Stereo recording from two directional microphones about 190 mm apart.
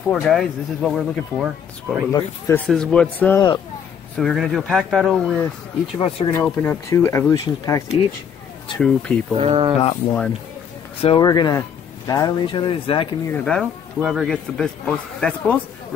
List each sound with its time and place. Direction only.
0.1 s a man's voice: centre (ahead or behind)
2.1 s a man's voice: 15° left (ahead or behind)
5.9 s speech: 30° left (ahead or behind)
6.3 s speech: 10° left (ahead or behind)
8.7 s a man's voice: 5° left (ahead or behind)
9.4 s speech: 30° right (ahead or behind)
9.8 s speech: 30° left (ahead or behind)
11.2 s speech: 20° left (ahead or behind)
13.3 s a man's voice: 5° left (ahead or behind)